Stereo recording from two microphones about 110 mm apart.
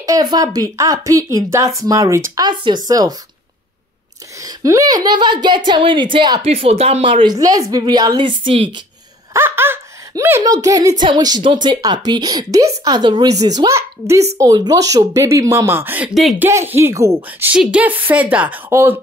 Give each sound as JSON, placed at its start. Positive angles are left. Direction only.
{"t": 0.0, "sound": "a woman's voice", "side_deg": -35}
{"t": 2.4, "sound": "a woman's voice", "side_deg": -40}
{"t": 4.4, "sound": "a woman's voice", "side_deg": -30}
{"t": 6.4, "sound": "speech", "side_deg": -65}
{"t": 7.2, "sound": "a woman's voice", "side_deg": -35}
{"t": 9.3, "sound": "laughter", "side_deg": -20}
{"t": 10.4, "sound": "a woman's voice", "side_deg": -35}
{"t": 17.5, "sound": "a woman's voice", "side_deg": -10}